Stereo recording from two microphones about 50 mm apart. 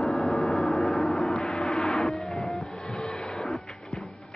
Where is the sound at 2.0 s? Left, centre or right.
Centre.